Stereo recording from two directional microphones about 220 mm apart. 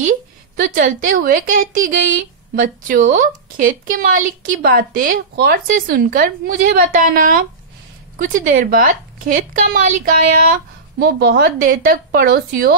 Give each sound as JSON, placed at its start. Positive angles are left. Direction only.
{"t": 0.6, "sound": "a woman's voice", "side_deg": -35}